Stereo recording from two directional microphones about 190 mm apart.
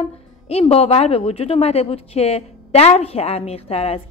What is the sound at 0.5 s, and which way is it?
A woman's voice, 30° left (ahead or behind).